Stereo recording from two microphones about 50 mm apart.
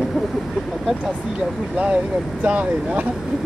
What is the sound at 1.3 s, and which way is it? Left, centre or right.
Speech, right.